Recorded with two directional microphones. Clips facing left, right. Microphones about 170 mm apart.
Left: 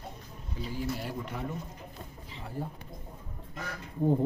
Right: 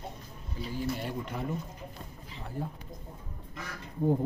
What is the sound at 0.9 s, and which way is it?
Speech, centre (ahead or behind).